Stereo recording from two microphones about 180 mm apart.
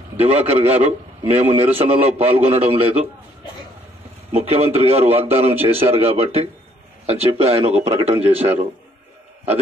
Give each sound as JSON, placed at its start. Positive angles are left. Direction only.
{"t": 0.2, "sound": "a man's voice", "side_deg": -35}
{"t": 4.3, "sound": "a man's voice", "side_deg": -35}